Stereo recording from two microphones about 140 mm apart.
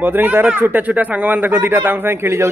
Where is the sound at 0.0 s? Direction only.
15° right (ahead or behind).